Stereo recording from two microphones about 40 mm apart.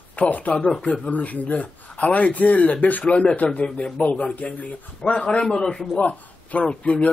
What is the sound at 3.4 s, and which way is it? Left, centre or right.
A man's voice, left.